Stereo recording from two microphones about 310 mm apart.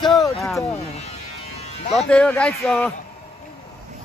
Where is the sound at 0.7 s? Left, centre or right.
Left.